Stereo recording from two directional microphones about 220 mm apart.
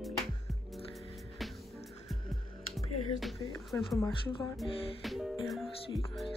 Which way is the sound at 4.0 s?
20° left (ahead or behind).